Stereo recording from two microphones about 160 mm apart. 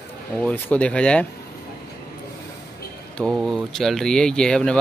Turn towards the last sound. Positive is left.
turn(degrees=5)  # may be behind; listen again after turning